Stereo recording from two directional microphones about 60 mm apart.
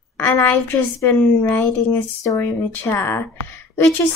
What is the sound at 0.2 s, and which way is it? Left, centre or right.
A woman's voice, left.